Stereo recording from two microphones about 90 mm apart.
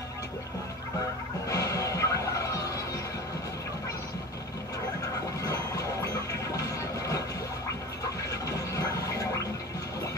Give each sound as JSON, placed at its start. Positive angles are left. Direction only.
{"t": 1.5, "sound": "music", "side_deg": 40}